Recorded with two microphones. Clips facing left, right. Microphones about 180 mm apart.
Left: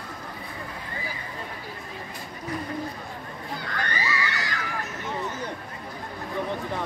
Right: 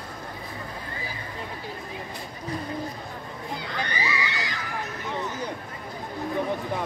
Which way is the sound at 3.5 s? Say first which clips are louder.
Even; 15° right (ahead or behind).